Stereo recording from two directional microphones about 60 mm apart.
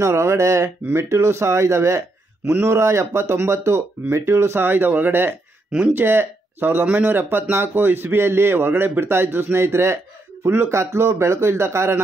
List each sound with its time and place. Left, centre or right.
0.0 s speech: right
5.7 s speech: centre
5.9 s speech: right
7.2 s speech: right